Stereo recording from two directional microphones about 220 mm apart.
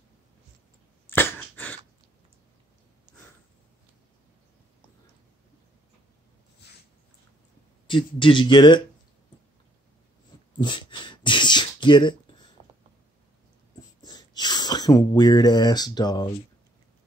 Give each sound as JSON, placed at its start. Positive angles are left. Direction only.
{"t": 1.1, "sound": "dog", "side_deg": 10}
{"t": 7.8, "sound": "speech", "side_deg": 20}
{"t": 10.6, "sound": "beatboxing", "side_deg": 20}
{"t": 14.0, "sound": "speech", "side_deg": 20}